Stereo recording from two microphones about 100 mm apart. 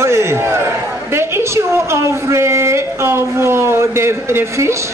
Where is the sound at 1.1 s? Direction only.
25° right (ahead or behind).